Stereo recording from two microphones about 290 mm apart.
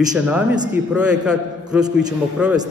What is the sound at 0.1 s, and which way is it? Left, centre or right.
A man's voice, centre.